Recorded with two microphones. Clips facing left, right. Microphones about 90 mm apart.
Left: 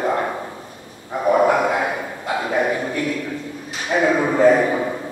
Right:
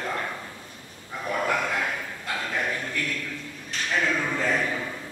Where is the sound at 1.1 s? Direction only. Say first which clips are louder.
Left 12 dB; 35° left (ahead or behind).